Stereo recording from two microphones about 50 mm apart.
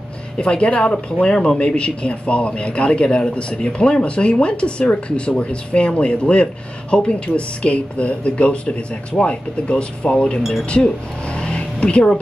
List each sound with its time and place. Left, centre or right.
0.4 s speech: left